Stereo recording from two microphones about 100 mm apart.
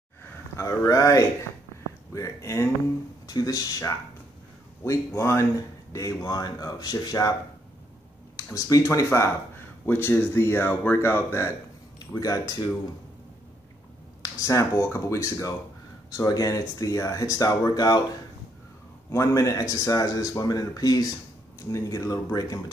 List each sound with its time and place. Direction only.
0.6 s speech: 35° left (ahead or behind)
8.5 s speech: 35° left (ahead or behind)
12.0 s speech: 40° left (ahead or behind)
14.2 s speech: 35° left (ahead or behind)
19.0 s speech: 30° left (ahead or behind)